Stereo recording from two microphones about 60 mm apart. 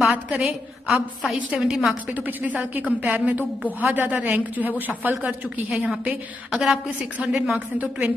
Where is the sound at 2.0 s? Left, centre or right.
Right; by 7.6 s centre.